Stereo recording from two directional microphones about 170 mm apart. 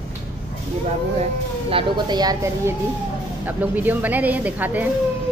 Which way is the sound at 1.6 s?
30° right (ahead or behind).